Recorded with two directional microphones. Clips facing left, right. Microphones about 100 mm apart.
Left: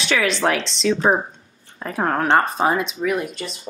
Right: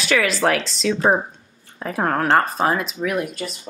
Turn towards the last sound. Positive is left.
turn(degrees=-5)  # may be behind; listen again after turning